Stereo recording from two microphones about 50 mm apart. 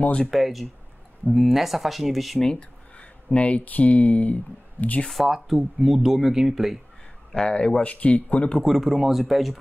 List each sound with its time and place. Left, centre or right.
0.0 s speech: left
0.3 s speech: centre
3.0 s speech: left
5.0 s speech: centre
7.3 s speech: centre
8.6 s speech: centre